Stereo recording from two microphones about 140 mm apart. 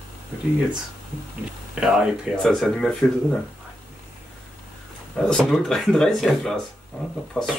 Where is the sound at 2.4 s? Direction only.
Centre (ahead or behind).